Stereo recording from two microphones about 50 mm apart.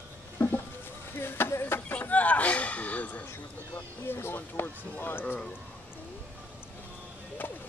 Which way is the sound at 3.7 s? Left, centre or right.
Left.